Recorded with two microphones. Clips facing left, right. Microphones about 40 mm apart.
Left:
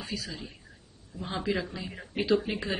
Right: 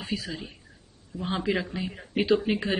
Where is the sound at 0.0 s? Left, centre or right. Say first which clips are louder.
Right 4 dB; right.